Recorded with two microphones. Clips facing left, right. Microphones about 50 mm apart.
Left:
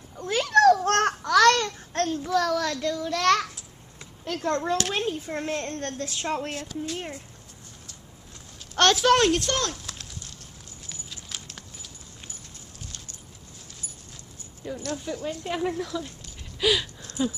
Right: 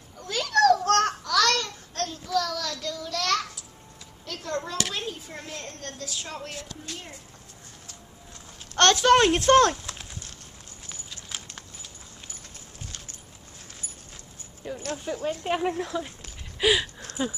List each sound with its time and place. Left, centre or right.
0.2 s babbling: left
4.2 s a woman's voice: left
8.7 s a child's voice: centre
9.3 s speech: right
9.9 s a sound: centre
14.6 s speech: right
16.5 s a sound: right
17.2 s speech: right